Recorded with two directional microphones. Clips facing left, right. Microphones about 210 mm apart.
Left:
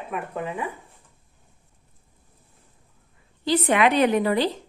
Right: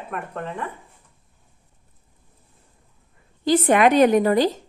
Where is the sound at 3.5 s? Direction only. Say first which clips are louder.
Right 4 dB; 45° right (ahead or behind).